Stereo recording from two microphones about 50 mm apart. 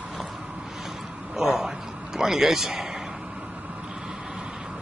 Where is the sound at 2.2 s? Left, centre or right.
Centre.